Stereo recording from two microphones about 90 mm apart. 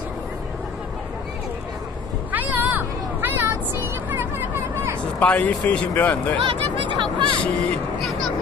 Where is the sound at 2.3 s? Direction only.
20° right (ahead or behind).